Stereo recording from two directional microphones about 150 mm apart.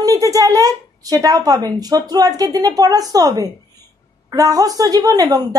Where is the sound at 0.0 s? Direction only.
25° right (ahead or behind).